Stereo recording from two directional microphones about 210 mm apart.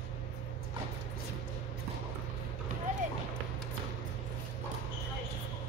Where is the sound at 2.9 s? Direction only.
35° right (ahead or behind).